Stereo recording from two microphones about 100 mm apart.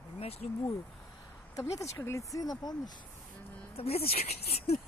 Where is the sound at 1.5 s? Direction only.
35° left (ahead or behind).